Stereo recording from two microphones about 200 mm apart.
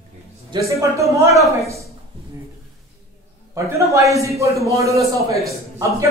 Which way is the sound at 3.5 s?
15° right (ahead or behind).